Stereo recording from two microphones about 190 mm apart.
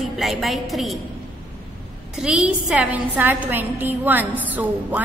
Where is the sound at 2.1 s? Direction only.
5° right (ahead or behind).